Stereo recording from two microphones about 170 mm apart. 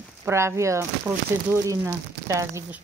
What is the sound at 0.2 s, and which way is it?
A woman's voice, 15° right (ahead or behind).